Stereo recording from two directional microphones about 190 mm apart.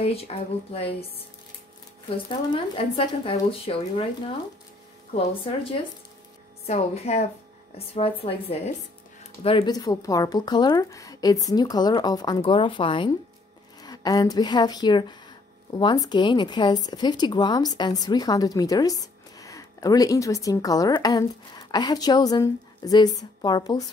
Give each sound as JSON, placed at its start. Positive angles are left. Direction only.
{"t": 0.0, "sound": "a woman's voice", "side_deg": 30}
{"t": 2.0, "sound": "a woman's voice", "side_deg": 25}
{"t": 9.8, "sound": "a woman's voice", "side_deg": 20}